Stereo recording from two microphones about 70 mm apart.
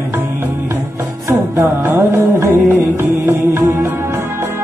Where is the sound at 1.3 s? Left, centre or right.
Right.